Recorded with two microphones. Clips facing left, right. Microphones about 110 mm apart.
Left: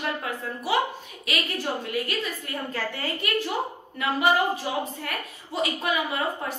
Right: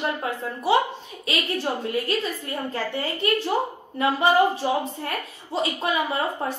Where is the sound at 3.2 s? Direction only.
30° right (ahead or behind).